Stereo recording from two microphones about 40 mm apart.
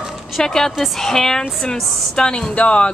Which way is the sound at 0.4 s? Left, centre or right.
Centre.